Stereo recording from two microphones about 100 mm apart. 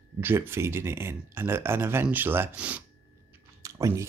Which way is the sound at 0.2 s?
25° right (ahead or behind).